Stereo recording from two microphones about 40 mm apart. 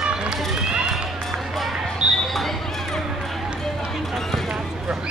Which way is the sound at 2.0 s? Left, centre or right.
Right.